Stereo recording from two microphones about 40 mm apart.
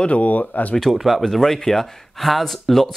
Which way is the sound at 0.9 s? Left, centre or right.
Centre.